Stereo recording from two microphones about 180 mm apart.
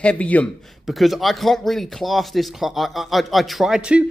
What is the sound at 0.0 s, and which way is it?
Speech, 5° left (ahead or behind).